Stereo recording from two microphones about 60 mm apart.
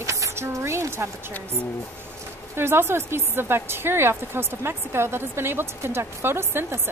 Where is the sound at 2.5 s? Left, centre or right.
Right.